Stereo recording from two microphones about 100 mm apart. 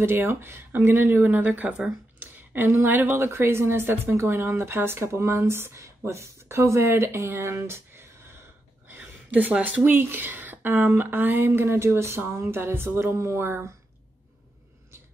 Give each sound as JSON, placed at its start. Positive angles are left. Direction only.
{"t": 0.0, "sound": "a woman's voice", "side_deg": -20}